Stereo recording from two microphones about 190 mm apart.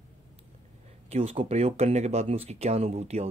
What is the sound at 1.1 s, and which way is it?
Speech, 30° right (ahead or behind).